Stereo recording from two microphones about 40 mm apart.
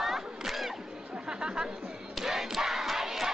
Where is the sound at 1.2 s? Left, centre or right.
Centre.